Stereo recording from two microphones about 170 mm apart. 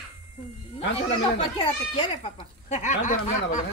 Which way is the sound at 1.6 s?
35° left (ahead or behind).